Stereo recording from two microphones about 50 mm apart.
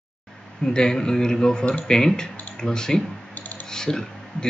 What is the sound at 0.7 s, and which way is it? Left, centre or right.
A man's voice, centre.